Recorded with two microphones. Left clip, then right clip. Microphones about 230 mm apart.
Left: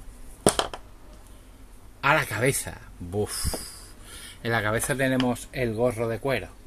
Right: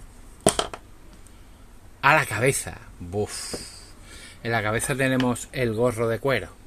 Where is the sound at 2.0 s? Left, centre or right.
Centre.